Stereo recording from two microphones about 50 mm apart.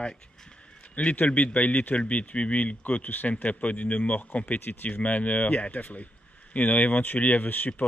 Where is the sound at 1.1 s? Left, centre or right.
Left.